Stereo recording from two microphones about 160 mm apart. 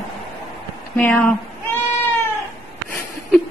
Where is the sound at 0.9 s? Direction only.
10° left (ahead or behind).